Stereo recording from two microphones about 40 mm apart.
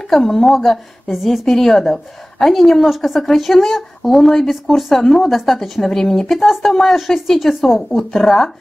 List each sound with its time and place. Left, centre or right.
0.1 s a woman's voice: centre
1.1 s a woman's voice: centre